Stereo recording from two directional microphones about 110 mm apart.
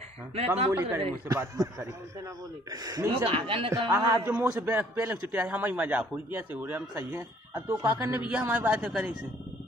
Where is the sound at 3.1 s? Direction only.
60° right (ahead or behind).